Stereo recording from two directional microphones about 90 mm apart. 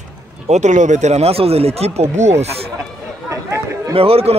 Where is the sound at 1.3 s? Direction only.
90° right.